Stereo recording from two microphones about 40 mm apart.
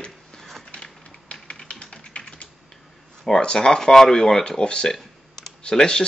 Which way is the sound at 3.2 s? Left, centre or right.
Centre.